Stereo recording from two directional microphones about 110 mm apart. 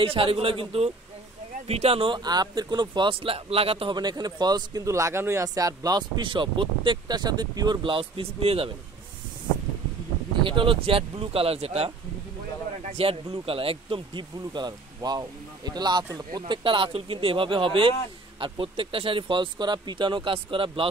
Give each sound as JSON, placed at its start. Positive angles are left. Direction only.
{"t": 0.0, "sound": "speech", "side_deg": -55}
{"t": 3.9, "sound": "a man's voice", "side_deg": -40}
{"t": 10.4, "sound": "speech", "side_deg": -50}